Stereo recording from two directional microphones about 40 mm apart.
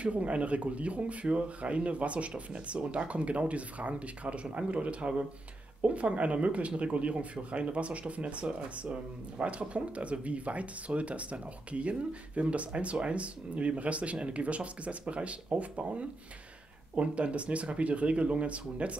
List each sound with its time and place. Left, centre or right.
0.0 s speech: right